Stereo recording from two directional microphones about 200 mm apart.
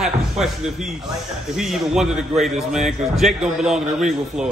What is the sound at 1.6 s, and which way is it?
A man's voice, centre (ahead or behind).